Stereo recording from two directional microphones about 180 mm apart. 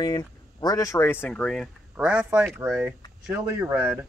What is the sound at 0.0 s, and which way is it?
Speech, 20° left (ahead or behind).